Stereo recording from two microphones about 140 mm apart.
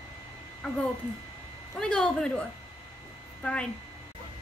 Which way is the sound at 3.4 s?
10° left (ahead or behind).